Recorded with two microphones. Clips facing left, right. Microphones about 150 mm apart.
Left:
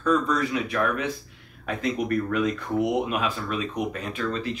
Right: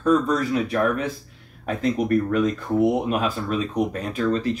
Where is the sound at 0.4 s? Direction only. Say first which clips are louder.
Right 4 dB; 40° right (ahead or behind).